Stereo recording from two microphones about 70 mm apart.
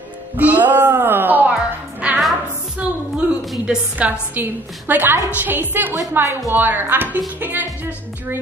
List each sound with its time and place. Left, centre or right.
0.4 s speech: right
1.5 s music: centre
2.8 s a sound: centre
4.4 s a woman's voice: right